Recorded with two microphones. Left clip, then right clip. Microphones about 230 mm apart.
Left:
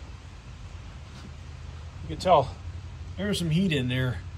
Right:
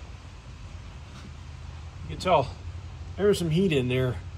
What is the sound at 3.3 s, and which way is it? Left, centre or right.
Speech, centre.